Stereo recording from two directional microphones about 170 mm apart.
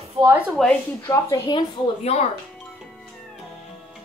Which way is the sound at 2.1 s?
40° left (ahead or behind).